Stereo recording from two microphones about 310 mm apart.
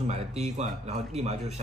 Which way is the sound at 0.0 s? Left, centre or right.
Right.